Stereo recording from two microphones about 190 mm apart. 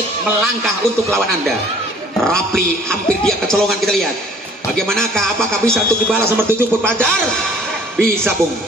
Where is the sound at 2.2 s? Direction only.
5° left (ahead or behind).